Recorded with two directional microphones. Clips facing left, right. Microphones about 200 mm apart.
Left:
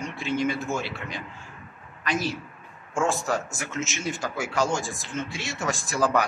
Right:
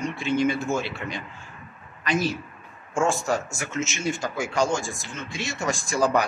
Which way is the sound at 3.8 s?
5° left (ahead or behind).